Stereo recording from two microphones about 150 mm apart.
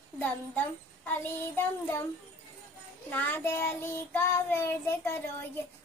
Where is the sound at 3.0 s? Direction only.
10° left (ahead or behind).